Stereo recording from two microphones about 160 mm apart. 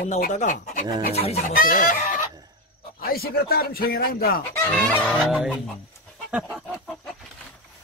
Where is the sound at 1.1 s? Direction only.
40° left (ahead or behind).